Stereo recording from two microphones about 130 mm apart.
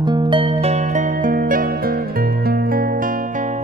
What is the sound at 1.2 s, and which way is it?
Music, 90° right.